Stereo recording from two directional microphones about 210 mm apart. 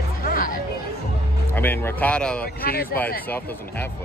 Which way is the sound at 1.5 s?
10° left (ahead or behind).